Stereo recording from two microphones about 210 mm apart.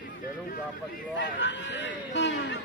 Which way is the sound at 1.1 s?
60° left (ahead or behind).